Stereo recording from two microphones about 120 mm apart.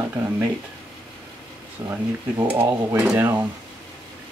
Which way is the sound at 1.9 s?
25° right (ahead or behind).